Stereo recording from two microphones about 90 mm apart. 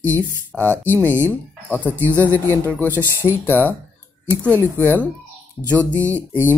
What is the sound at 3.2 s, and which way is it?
Speech, 25° left (ahead or behind).